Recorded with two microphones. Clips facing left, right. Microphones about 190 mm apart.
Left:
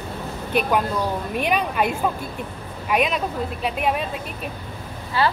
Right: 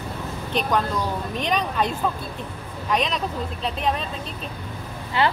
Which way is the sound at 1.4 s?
10° left (ahead or behind).